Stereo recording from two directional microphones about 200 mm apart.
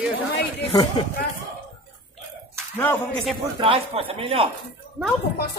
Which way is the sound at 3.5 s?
25° right (ahead or behind).